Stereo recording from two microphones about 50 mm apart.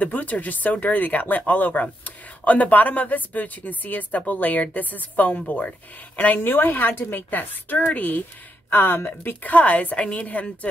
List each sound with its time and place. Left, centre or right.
0.0 s speech: left
8.6 s a woman's voice: left